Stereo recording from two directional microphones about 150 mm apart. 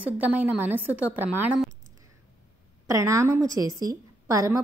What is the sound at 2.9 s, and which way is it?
A woman's voice, 20° right (ahead or behind).